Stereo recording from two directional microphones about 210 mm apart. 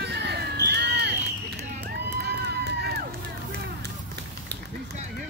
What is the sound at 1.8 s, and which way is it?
Music, 50° right (ahead or behind).